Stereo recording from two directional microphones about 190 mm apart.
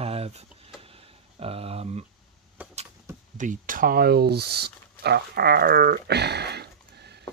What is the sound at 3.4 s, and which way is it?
Speech, 45° right (ahead or behind).